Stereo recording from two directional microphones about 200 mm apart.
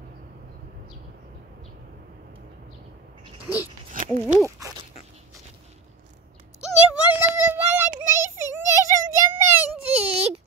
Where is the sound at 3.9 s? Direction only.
45° right (ahead or behind).